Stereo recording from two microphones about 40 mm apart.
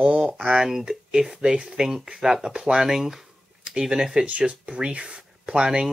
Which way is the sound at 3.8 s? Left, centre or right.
Centre.